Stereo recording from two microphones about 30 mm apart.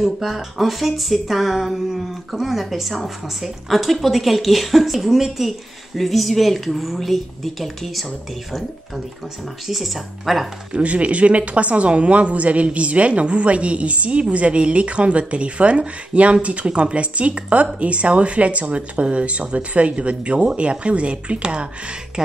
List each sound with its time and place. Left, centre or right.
0.0 s speech: centre
9.7 s speech: centre
10.7 s speech: right